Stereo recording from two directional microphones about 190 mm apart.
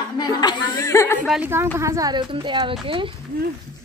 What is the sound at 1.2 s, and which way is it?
Speech, centre (ahead or behind).